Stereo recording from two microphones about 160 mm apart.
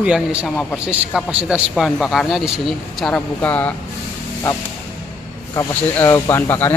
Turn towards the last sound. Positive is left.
turn(degrees=15)  # may be behind; listen again after turning